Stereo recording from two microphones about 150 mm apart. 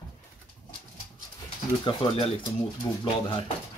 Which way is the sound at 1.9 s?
40° left (ahead or behind).